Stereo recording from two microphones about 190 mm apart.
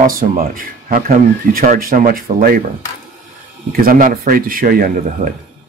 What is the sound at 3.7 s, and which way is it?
Speech, 50° right (ahead or behind).